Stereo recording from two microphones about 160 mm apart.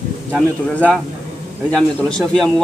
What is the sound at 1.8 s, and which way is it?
Speech, 5° left (ahead or behind).